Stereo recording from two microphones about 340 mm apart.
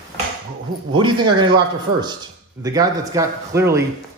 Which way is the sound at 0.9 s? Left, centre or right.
Centre.